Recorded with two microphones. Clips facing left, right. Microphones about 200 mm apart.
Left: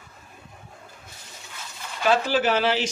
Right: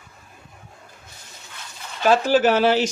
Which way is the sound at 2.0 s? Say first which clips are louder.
Right 5 dB; 45° right (ahead or behind).